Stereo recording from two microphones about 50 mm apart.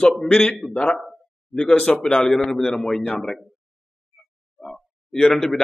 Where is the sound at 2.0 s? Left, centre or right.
Centre.